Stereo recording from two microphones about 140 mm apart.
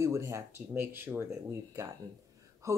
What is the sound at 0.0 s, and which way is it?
Speech, 20° right (ahead or behind).